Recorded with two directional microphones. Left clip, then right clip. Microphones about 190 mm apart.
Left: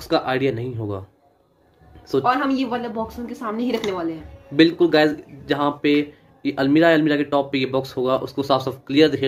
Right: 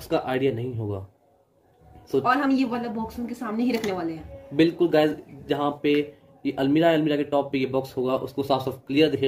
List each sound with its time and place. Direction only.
0.0 s speech: 5° left (ahead or behind)
2.2 s speech: 20° right (ahead or behind)
4.6 s speech: 5° left (ahead or behind)